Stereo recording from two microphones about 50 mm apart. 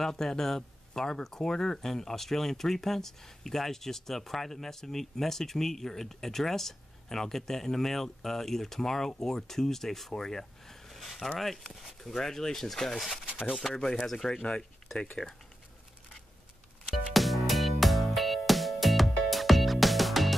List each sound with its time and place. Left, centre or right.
0.0 s speech: centre
13.2 s a sound: centre
13.5 s speech: centre
17.1 s music: centre